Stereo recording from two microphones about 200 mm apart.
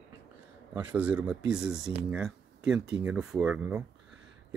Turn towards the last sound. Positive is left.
turn(degrees=-5)  # may be behind; listen again after turning